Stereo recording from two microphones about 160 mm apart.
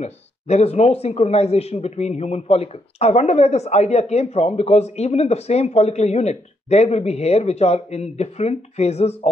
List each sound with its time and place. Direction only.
0.0 s speech: 45° left (ahead or behind)